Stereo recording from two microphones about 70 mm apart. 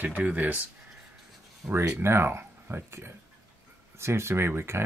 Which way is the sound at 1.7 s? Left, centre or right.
Right.